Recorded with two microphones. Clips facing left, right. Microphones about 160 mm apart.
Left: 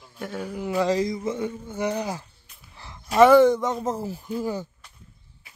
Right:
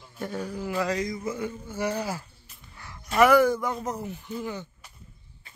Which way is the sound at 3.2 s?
25° left (ahead or behind).